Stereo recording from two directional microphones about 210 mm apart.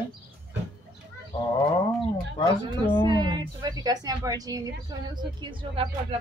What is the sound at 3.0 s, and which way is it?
A woman's voice, 20° right (ahead or behind).